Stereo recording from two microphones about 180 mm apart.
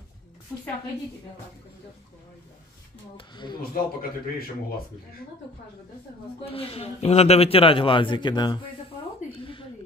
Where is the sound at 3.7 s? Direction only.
55° left (ahead or behind).